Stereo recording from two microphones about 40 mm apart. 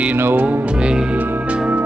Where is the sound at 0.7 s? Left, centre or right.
Right.